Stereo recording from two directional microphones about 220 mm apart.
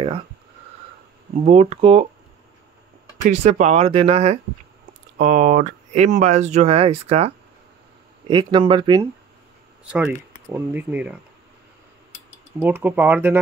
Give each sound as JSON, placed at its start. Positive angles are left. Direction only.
{"t": 1.4, "sound": "speech", "side_deg": -30}
{"t": 3.3, "sound": "speech", "side_deg": -35}
{"t": 9.8, "sound": "speech", "side_deg": -5}
{"t": 12.5, "sound": "speech", "side_deg": -10}